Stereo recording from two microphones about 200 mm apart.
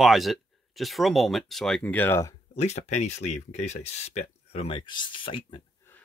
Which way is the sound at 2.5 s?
35° left (ahead or behind).